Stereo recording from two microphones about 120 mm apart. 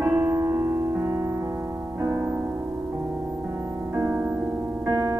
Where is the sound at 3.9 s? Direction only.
20° right (ahead or behind).